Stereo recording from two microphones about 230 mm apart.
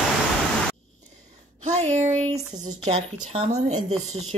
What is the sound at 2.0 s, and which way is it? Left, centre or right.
Speech, right.